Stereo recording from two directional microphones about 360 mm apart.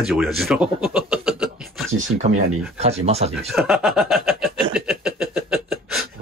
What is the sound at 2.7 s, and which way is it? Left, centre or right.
Speech, centre.